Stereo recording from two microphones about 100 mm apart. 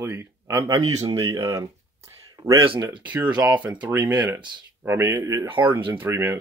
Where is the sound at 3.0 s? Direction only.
15° right (ahead or behind).